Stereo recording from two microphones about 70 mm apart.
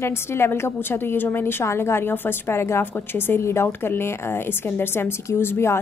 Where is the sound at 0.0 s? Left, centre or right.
Left.